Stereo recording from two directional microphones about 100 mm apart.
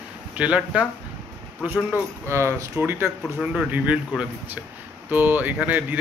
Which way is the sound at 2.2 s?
25° right (ahead or behind).